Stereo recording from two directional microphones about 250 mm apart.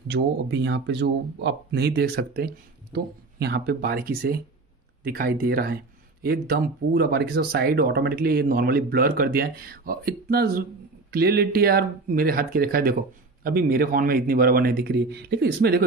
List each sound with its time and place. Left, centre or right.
0.1 s speech: right